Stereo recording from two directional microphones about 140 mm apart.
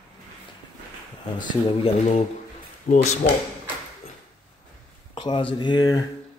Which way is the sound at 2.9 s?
90° left.